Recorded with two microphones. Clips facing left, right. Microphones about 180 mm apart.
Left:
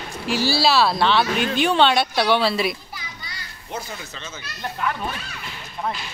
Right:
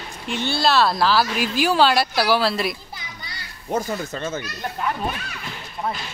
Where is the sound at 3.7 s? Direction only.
45° right (ahead or behind).